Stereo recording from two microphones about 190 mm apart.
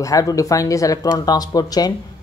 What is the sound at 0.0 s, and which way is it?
Speech, 20° left (ahead or behind).